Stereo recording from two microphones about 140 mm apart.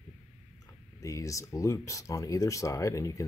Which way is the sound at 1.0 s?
20° left (ahead or behind).